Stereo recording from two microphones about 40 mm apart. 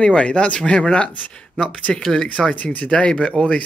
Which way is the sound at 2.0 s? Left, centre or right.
Centre.